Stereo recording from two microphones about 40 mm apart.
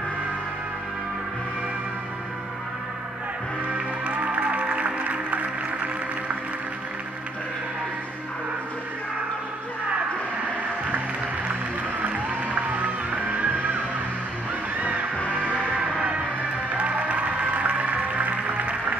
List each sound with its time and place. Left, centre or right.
3.7 s music: right
12.0 s music: right
16.7 s music: right